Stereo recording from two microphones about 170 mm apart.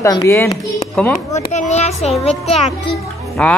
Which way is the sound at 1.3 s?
45° left (ahead or behind).